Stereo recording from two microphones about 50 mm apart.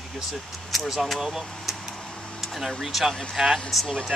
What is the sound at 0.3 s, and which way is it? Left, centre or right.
Speech, centre.